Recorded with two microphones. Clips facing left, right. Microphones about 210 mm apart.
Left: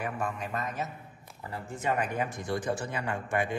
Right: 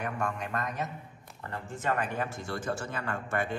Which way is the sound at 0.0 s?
5° left (ahead or behind).